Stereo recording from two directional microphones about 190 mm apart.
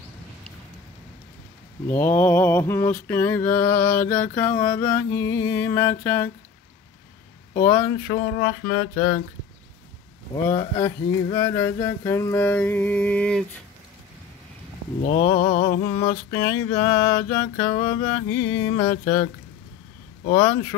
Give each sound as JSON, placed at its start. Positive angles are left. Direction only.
{"t": 1.9, "sound": "mantra", "side_deg": 10}
{"t": 7.6, "sound": "mantra", "side_deg": 10}
{"t": 10.3, "sound": "mantra", "side_deg": 15}
{"t": 15.0, "sound": "mantra", "side_deg": 50}
{"t": 15.9, "sound": "mantra", "side_deg": 15}
{"t": 20.3, "sound": "mantra", "side_deg": 15}